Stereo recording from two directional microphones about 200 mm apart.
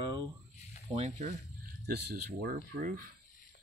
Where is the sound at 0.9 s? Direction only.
30° right (ahead or behind).